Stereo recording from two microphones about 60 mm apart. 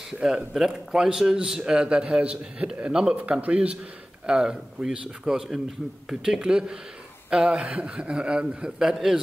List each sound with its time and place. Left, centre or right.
0.2 s a man's voice: centre